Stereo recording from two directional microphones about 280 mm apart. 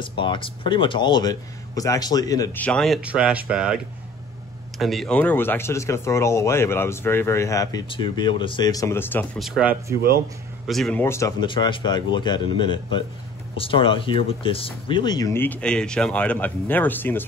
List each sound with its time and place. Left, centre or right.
0.0 s speech: centre
10.7 s speech: centre